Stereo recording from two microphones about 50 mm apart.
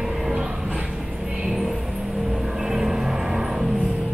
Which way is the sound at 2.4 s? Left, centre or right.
Centre.